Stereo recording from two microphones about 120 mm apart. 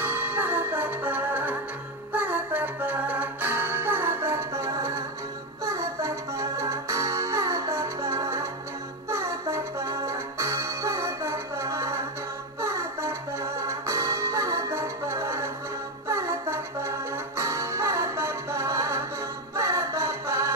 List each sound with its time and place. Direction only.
0.0 s music: 15° right (ahead or behind)